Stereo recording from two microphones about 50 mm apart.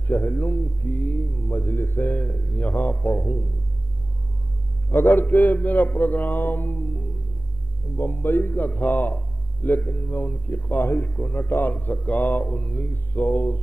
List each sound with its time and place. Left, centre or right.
0.0 s a man's voice: left
4.8 s a man's voice: left